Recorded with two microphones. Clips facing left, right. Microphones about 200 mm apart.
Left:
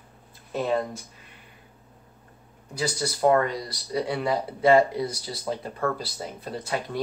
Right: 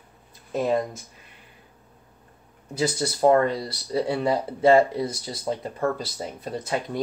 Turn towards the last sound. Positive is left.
turn(degrees=-20)  # may be behind; listen again after turning